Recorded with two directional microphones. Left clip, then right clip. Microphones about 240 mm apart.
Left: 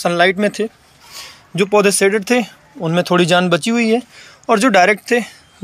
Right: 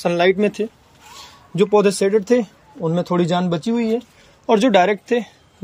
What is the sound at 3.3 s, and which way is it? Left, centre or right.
Speech, centre.